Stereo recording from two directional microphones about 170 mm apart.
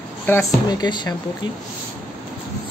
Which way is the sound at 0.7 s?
25° left (ahead or behind).